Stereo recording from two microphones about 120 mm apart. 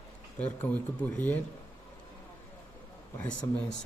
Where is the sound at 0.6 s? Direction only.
15° left (ahead or behind).